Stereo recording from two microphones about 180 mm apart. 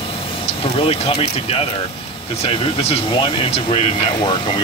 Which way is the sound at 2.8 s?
30° left (ahead or behind).